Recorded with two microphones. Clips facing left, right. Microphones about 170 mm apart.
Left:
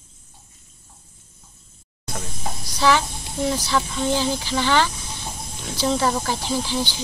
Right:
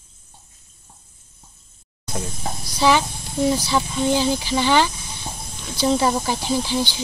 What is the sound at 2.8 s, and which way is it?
Speech, 15° right (ahead or behind).